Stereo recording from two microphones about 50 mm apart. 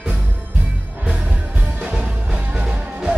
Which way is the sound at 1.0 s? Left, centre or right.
Right.